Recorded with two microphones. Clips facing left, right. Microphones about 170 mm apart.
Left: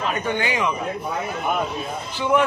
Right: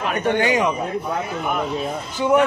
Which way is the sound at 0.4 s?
40° right (ahead or behind).